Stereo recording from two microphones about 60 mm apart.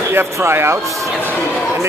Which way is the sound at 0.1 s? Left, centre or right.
Right.